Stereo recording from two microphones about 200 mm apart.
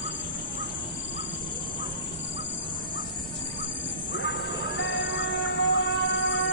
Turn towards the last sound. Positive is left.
turn(degrees=60)  # may be behind; listen again after turning